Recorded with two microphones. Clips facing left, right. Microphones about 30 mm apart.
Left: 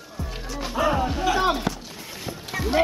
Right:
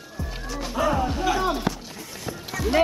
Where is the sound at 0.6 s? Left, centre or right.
Centre.